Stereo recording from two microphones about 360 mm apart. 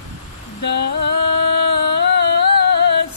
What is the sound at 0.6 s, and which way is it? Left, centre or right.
Rain on surface, left.